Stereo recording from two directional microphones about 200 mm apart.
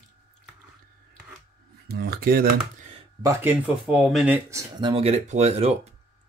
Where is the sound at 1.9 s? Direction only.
50° right (ahead or behind).